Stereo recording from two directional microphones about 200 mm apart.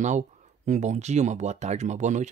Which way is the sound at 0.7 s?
35° right (ahead or behind).